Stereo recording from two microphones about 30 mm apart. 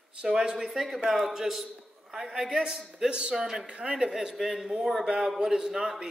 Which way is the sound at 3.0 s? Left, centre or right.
Right.